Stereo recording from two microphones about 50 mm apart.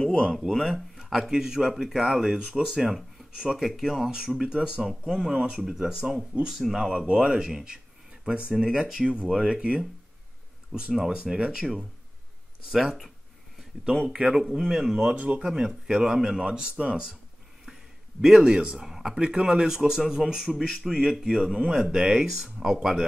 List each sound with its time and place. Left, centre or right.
0.0 s a sound: centre
0.5 s speech: centre
0.9 s a sound: centre
1.3 s speech: centre
7.2 s speech: centre
14.1 s speech: centre
15.1 s speech: right
18.2 s speech: centre